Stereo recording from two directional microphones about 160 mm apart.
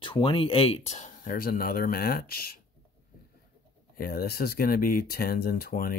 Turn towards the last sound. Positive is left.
turn(degrees=65)  # may be behind; listen again after turning